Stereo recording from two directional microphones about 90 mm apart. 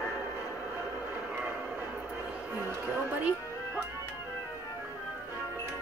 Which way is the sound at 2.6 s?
20° right (ahead or behind).